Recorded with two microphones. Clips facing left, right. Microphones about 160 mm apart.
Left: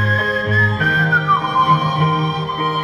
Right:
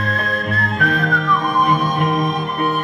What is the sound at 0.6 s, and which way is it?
Music, 45° right (ahead or behind).